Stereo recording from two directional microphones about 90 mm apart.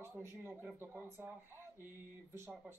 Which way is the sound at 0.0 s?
25° right (ahead or behind).